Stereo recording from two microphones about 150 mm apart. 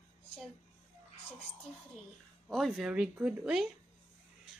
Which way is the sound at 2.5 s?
Centre (ahead or behind).